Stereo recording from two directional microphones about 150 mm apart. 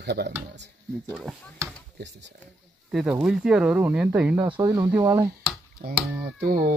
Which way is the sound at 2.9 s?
5° right (ahead or behind).